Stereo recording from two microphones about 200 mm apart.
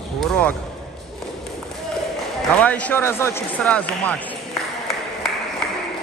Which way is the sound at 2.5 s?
5° left (ahead or behind).